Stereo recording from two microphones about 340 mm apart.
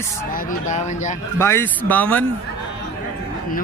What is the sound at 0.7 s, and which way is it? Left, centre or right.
Speech, left.